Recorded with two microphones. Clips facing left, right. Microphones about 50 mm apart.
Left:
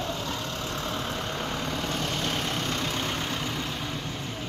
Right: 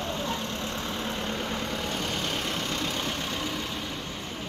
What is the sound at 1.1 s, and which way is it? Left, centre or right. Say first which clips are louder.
Vehicle: even; centre.